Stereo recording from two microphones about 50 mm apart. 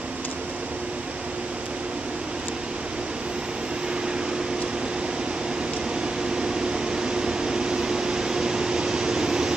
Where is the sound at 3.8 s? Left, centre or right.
Centre.